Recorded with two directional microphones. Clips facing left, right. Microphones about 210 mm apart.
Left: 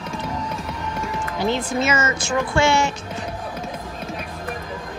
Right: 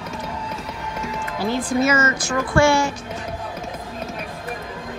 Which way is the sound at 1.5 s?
25° left (ahead or behind).